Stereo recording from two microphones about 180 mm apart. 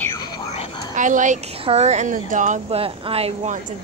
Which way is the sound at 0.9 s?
45° right (ahead or behind).